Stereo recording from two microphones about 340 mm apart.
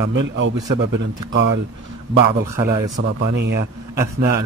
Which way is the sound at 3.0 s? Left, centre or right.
Right.